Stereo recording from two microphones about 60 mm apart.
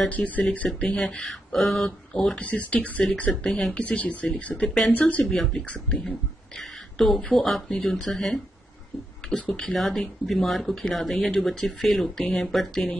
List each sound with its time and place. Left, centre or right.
0.1 s speech: left
0.7 s speech: centre
2.3 s speech: left
3.4 s speech: centre
3.8 s speech: left
4.6 s speech: centre
4.9 s speech: left
5.4 s speech: centre
5.7 s speech: left
7.0 s speech: centre